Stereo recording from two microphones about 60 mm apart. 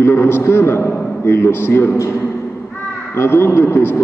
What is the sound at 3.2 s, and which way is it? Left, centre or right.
Speech, left.